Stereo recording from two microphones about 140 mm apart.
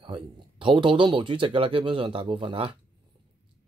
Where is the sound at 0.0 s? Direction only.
35° right (ahead or behind).